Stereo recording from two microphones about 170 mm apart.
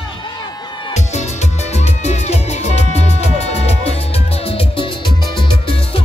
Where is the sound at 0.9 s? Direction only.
40° left (ahead or behind).